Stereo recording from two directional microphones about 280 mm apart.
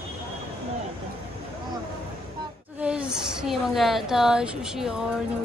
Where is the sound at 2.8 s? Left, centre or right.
Centre.